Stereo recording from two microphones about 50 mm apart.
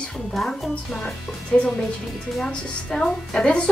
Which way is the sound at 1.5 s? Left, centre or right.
Centre.